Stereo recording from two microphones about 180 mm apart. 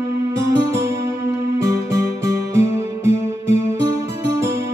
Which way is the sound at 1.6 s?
15° right (ahead or behind).